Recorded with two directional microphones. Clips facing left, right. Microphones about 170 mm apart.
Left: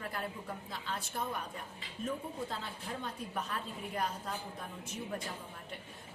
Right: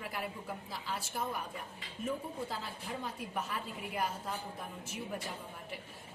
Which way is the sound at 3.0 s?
5° right (ahead or behind).